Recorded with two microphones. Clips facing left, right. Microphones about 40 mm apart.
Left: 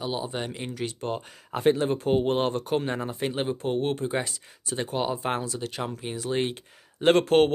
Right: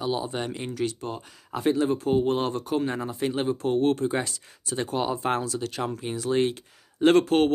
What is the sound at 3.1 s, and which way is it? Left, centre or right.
Speech, left.